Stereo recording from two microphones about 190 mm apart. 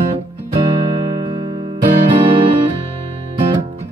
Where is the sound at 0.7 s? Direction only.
25° right (ahead or behind).